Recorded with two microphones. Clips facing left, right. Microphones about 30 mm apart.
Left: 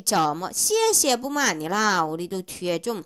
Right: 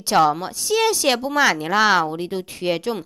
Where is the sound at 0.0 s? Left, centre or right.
Right.